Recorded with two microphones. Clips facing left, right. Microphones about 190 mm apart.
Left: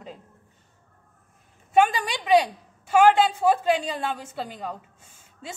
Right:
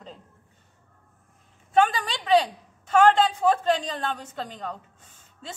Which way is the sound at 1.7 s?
10° left (ahead or behind).